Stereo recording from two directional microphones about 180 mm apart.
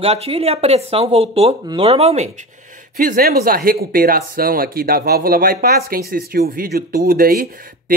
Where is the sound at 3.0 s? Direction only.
55° right (ahead or behind).